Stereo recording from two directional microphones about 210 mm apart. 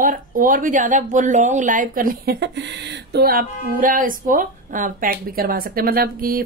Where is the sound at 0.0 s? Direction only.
40° right (ahead or behind).